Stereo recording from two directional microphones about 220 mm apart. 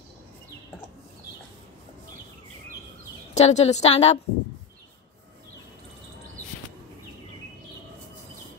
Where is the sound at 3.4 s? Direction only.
30° left (ahead or behind).